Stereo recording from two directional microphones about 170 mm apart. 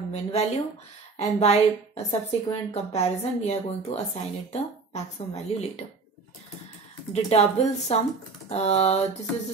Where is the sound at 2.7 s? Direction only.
40° left (ahead or behind).